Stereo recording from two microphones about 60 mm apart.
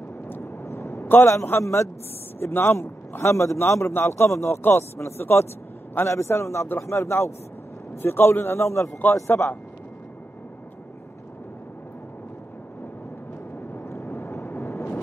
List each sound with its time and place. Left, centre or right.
0.4 s vehicle: left
1.0 s a sound: left
1.3 s speech: left
1.6 s a man's voice: left
2.4 s a man's voice: left
9.0 s speech: left
13.8 s vehicle: left